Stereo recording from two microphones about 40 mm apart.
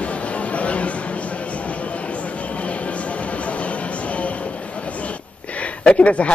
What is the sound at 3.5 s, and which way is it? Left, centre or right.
Music, left.